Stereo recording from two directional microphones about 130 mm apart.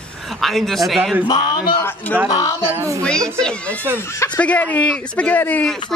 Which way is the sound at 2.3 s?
25° left (ahead or behind).